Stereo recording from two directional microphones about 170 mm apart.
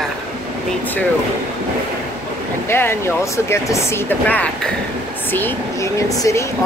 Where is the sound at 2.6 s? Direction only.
15° left (ahead or behind).